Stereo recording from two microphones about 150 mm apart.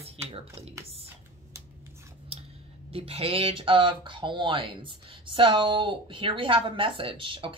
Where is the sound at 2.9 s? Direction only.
40° right (ahead or behind).